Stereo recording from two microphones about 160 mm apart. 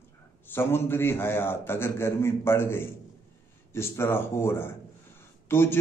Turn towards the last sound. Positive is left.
turn(degrees=15)  # may be behind; listen again after turning